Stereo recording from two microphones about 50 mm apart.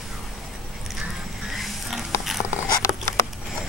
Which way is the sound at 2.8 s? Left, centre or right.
Left.